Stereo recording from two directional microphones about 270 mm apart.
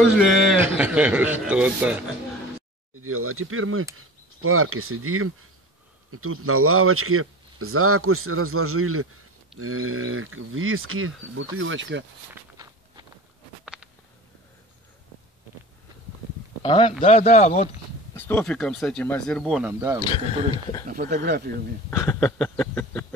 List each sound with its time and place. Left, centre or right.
0.2 s speech: centre
3.0 s speech: right
16.6 s speech: centre
18.1 s speech: centre
20.0 s a sound: centre
20.8 s speech: right
21.9 s a sound: centre